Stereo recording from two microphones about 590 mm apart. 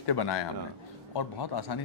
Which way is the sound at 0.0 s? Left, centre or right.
Left.